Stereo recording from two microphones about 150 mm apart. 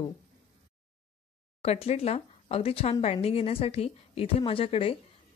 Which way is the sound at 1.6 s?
45° left (ahead or behind).